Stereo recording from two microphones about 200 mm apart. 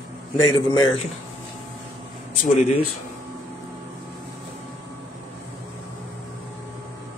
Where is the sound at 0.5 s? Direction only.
20° left (ahead or behind).